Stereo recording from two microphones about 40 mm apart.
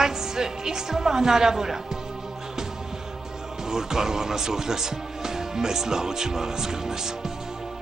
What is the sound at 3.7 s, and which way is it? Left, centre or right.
Speech, centre.